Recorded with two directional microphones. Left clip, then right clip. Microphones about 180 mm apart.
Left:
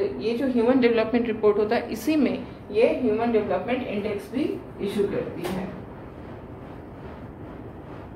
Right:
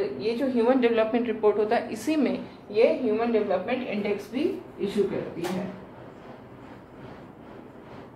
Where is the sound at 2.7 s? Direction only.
20° left (ahead or behind).